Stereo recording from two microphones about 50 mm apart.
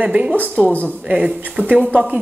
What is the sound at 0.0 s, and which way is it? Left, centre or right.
Speech, right.